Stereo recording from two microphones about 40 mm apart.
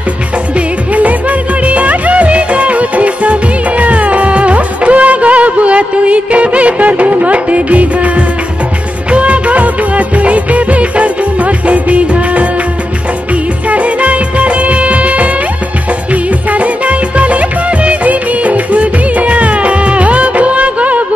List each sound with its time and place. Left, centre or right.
1.6 s music: right
9.1 s music of bollywood: right
13.7 s music of bollywood: right
16.1 s music: right